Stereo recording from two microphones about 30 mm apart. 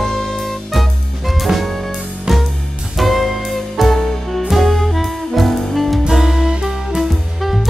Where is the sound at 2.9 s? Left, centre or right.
Centre.